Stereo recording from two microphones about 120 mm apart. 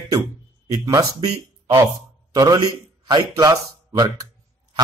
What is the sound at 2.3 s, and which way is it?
A man's voice, 35° right (ahead or behind).